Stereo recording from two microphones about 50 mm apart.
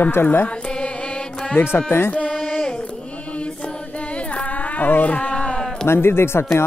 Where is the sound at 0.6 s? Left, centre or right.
Left.